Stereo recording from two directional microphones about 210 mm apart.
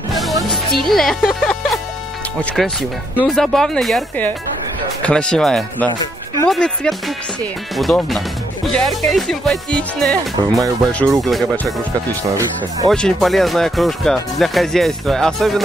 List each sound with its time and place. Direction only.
0.1 s music: centre (ahead or behind)
0.8 s speech: centre (ahead or behind)
3.2 s speech: centre (ahead or behind)
12.2 s speech: 15° right (ahead or behind)
12.9 s speech: centre (ahead or behind)